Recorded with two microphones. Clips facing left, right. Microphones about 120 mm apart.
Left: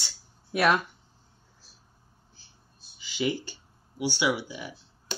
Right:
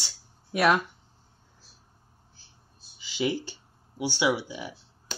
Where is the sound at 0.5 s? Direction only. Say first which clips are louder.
Right 1 dB; centre (ahead or behind).